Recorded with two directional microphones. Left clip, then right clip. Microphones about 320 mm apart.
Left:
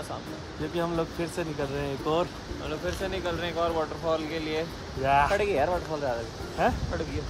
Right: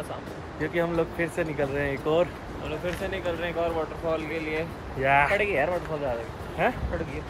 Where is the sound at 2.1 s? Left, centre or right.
Centre.